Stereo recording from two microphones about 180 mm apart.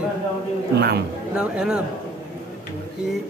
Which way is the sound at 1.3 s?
5° right (ahead or behind).